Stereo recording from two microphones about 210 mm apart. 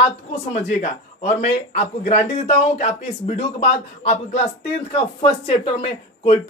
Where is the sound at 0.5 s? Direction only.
30° left (ahead or behind).